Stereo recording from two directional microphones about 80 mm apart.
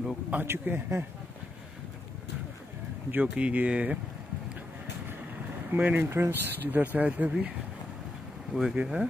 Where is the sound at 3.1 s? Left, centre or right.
Centre.